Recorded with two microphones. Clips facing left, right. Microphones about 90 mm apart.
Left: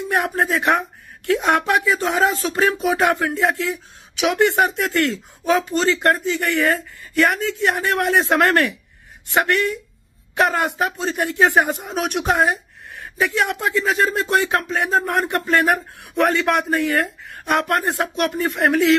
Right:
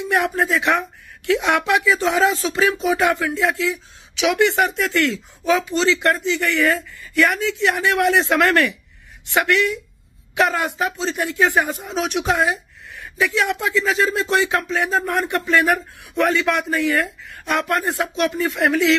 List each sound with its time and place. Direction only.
0.2 s a man's voice: 50° left (ahead or behind)